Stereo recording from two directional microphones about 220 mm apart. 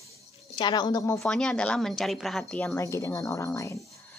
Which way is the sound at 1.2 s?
Centre (ahead or behind).